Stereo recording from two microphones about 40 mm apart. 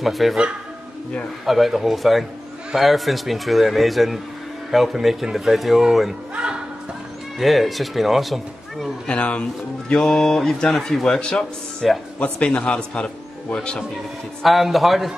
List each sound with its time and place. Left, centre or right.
0.0 s a man's voice: centre
1.4 s a man's voice: centre
6.3 s music: right
7.3 s a man's voice: centre
9.1 s a man's voice: left
9.9 s speech: centre
12.2 s a man's voice: left
14.4 s a man's voice: centre